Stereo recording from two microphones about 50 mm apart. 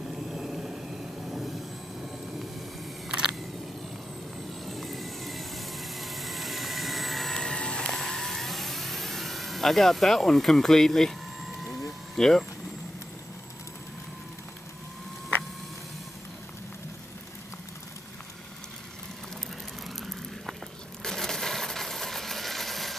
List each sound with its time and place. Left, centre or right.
0.1 s vehicle: centre
3.1 s a sound: centre
4.6 s vehicle: centre
7.5 s music: centre
7.9 s vehicle: centre
12.2 s speech: centre
20.0 s vehicle: centre
21.0 s a sound: centre